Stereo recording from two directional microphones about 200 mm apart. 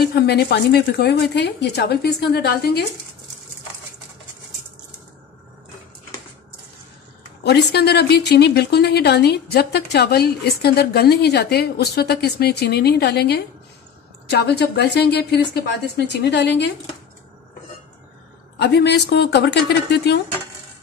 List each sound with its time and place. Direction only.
0.0 s speech: 55° left (ahead or behind)
7.4 s speech: 55° left (ahead or behind)
18.6 s speech: 55° left (ahead or behind)